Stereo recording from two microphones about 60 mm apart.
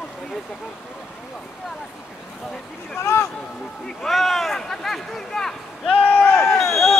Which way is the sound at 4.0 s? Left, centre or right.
Centre.